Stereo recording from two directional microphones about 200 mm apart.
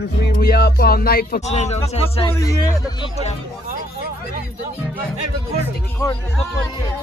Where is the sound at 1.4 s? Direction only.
35° left (ahead or behind).